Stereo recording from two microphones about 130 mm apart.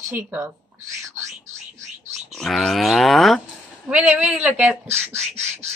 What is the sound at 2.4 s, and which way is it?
A woman's voice, centre (ahead or behind).